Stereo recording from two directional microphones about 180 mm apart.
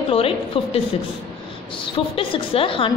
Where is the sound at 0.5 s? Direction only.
30° left (ahead or behind).